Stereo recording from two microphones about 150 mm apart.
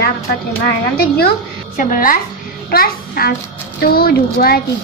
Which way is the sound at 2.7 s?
90° left.